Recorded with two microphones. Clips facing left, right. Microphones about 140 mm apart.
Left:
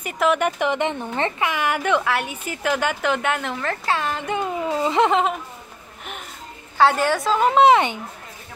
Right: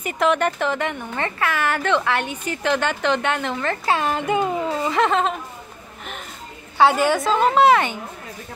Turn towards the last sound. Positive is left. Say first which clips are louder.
# left 1 dB
turn(degrees=20)  # may be behind; listen again after turning